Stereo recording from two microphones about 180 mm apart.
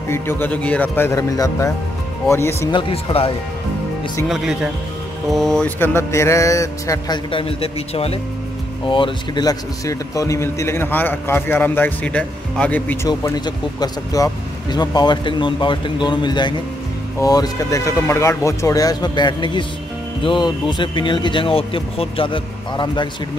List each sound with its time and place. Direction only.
0.1 s a man's voice: 10° left (ahead or behind)
2.7 s speech: 30° left (ahead or behind)
5.3 s a man's voice: centre (ahead or behind); by 23.0 s 25° left (ahead or behind)